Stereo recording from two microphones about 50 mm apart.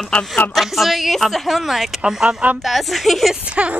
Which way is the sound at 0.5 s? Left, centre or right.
Centre.